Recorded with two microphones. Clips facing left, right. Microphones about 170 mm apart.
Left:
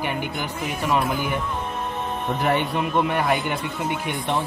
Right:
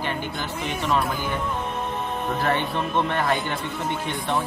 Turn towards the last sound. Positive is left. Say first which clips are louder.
# left 2 dB
turn(degrees=15)  # may be behind; listen again after turning